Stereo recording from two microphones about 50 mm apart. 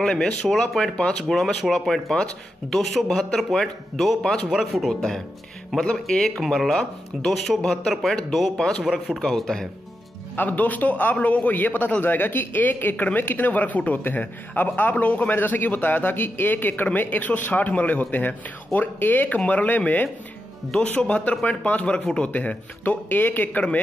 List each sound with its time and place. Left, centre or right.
0.0 s speech: centre
1.3 s speech: centre
4.5 s speech: centre
4.8 s speech: centre
5.7 s speech: centre
6.1 s speech: centre
7.6 s speech: centre
7.9 s speech: centre
8.5 s speech: centre
8.8 s speech: centre
9.2 s speech: centre
10.3 s speech: left
21.5 s speech: left